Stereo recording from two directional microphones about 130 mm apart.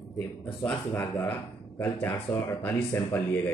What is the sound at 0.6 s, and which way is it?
Speech, 15° left (ahead or behind).